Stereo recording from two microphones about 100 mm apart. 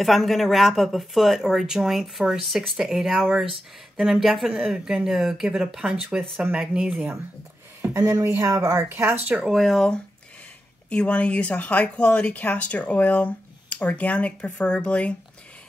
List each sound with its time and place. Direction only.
0.0 s speech: centre (ahead or behind)
6.3 s speech: 15° right (ahead or behind)
7.9 s speech: 30° right (ahead or behind)
9.3 s speech: centre (ahead or behind)